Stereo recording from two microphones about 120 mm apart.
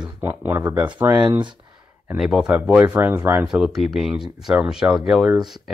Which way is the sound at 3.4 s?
5° right (ahead or behind).